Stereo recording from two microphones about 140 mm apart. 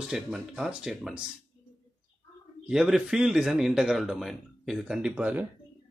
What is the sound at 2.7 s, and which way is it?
A man's voice, 5° right (ahead or behind).